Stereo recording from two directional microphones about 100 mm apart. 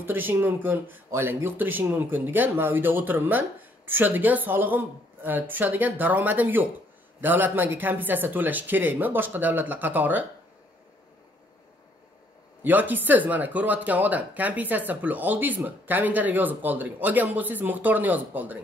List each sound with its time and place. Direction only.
0.0 s speech: 20° right (ahead or behind)
12.6 s speech: 20° right (ahead or behind)